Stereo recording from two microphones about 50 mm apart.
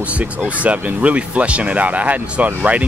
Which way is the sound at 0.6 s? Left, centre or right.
Right.